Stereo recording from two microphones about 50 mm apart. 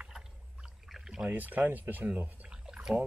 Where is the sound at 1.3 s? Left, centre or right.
Right.